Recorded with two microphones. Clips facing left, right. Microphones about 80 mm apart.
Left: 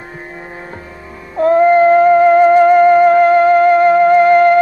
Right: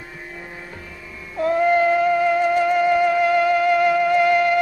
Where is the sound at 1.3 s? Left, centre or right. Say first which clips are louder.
Left 8 dB; left.